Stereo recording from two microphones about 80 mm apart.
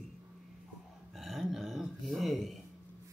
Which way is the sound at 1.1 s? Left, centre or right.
Centre.